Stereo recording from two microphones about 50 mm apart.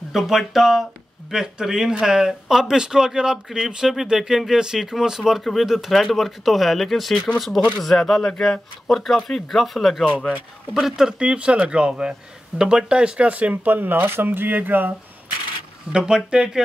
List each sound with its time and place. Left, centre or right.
0.1 s speech: centre
5.4 s speech: centre; by 15.0 s right
15.9 s speech: centre